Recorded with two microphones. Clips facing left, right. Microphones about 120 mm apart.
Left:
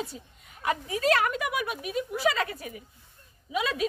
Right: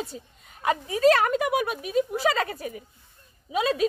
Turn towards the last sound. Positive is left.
turn(degrees=-35)  # may be behind; listen again after turning